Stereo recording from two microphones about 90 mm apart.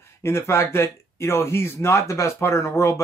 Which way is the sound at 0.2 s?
30° left (ahead or behind).